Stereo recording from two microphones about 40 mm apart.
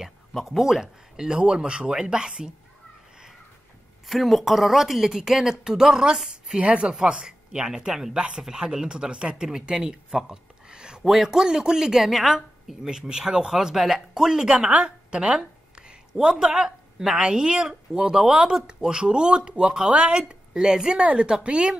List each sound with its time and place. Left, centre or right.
0.0 s speech: centre
4.1 s speech: centre
6.6 s speech: right
14.7 s a woman's voice: right
20.9 s speech: right